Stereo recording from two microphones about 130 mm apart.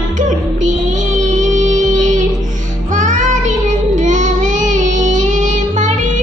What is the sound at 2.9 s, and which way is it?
Child singing, 70° right (ahead or behind).